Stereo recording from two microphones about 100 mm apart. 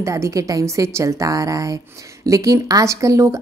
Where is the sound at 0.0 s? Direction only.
30° right (ahead or behind).